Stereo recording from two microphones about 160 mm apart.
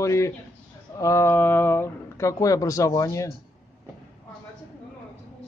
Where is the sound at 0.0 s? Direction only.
20° left (ahead or behind).